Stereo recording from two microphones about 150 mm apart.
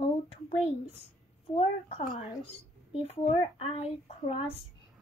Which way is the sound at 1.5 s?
35° left (ahead or behind).